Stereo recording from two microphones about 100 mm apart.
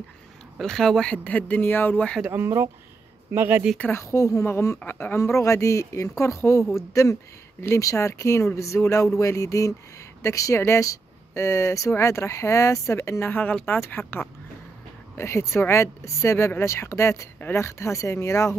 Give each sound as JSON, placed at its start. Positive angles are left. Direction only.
{"t": 0.6, "sound": "speech", "side_deg": 5}
{"t": 2.2, "sound": "speech", "side_deg": -25}
{"t": 3.9, "sound": "speech", "side_deg": 30}